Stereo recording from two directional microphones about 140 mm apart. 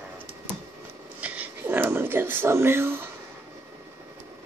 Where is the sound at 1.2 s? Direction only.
10° right (ahead or behind).